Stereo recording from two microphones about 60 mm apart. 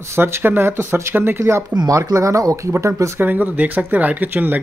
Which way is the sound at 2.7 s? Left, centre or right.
Right.